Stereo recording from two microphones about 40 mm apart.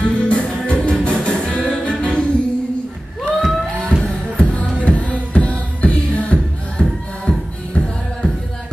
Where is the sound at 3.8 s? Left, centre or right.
Left.